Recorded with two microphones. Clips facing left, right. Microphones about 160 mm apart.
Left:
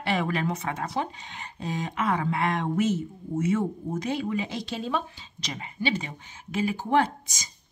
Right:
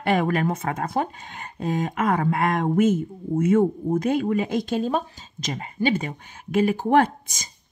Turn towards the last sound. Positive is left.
turn(degrees=-55)  # may be behind; listen again after turning